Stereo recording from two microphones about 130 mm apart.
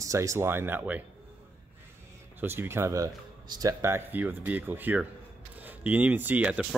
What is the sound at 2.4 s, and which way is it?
Speech, 15° right (ahead or behind).